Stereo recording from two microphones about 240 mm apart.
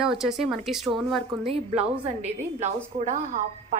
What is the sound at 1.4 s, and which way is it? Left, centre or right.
A woman's voice, right.